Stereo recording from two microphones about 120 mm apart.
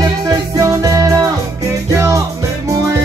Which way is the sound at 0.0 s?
30° right (ahead or behind).